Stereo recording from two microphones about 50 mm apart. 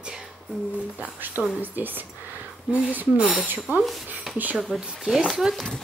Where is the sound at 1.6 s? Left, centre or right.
Right.